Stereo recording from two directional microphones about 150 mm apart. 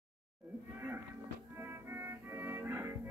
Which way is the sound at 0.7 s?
15° right (ahead or behind).